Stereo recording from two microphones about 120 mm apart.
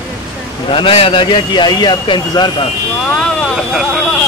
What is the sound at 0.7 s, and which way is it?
A man's voice, 45° left (ahead or behind).